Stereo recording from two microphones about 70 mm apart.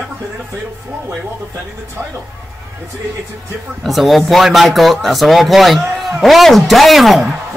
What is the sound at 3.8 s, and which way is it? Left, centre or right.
A man's voice, centre.